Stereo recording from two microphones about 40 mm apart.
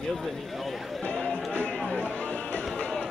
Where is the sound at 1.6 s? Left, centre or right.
Left.